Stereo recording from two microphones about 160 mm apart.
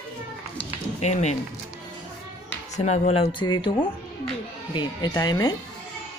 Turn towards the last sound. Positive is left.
turn(degrees=25)  # may be behind; listen again after turning